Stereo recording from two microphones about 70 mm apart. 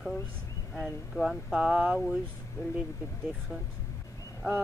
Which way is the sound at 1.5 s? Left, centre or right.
Centre.